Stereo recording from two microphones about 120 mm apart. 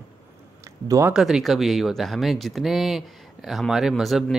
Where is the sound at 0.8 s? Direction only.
25° right (ahead or behind).